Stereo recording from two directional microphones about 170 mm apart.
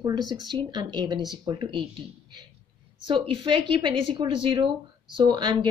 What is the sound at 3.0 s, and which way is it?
A woman's voice, 30° right (ahead or behind).